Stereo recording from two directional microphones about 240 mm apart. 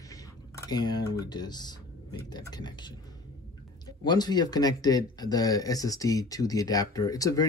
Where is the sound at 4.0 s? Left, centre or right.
Centre.